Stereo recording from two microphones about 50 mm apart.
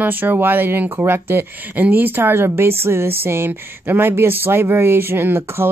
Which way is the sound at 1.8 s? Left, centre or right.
Right.